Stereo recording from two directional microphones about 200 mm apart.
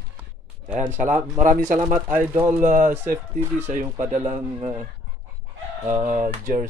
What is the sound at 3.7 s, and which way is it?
Speech, 40° right (ahead or behind).